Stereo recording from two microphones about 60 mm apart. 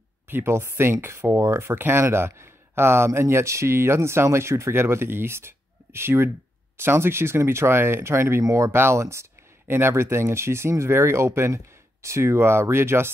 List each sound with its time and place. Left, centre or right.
0.3 s speech: right
8.7 s speech: right